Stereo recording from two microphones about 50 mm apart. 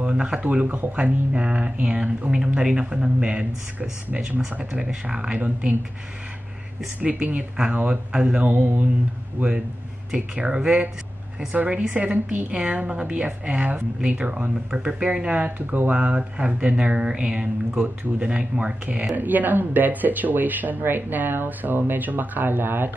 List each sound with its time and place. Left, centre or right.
0.0 s a woman's voice: right
5.0 s a woman's voice: right
7.0 s a woman's voice: right
10.1 s a woman's voice: right
15.0 s speech: right
15.9 s a woman's voice: right